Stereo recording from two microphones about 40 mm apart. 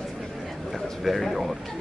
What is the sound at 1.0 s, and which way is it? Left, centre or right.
Music, centre.